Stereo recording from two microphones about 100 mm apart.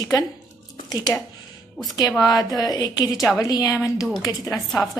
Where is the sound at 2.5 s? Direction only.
40° left (ahead or behind).